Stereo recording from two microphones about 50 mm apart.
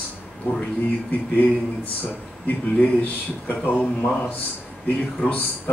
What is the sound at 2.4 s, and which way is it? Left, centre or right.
Speech, left.